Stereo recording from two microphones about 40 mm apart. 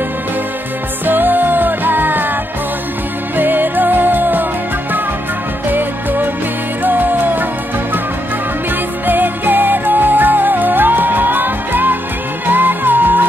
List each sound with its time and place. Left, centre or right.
1.0 s music: right
3.3 s music: right
5.7 s music: right
9.0 s music: right